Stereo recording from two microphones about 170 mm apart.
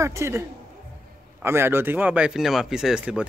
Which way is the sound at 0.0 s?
15° right (ahead or behind).